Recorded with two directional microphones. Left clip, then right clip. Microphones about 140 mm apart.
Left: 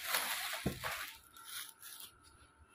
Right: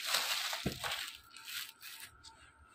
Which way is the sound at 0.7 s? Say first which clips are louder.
Right 1 dB; 60° right (ahead or behind).